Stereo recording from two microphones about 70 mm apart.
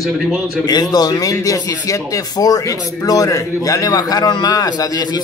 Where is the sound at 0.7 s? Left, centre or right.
Left.